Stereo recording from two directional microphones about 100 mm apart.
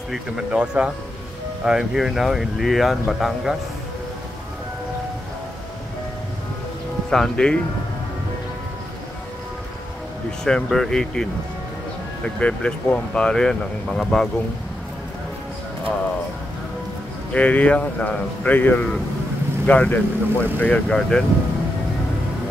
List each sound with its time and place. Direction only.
0.1 s speech: 10° right (ahead or behind)
7.1 s speech: 5° left (ahead or behind)
10.4 s speech: 5° left (ahead or behind)
12.4 s speech: 10° left (ahead or behind)
17.3 s speech: 15° left (ahead or behind)